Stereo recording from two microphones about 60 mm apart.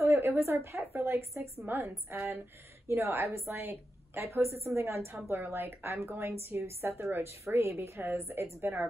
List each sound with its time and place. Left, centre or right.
0.0 s a woman's voice: right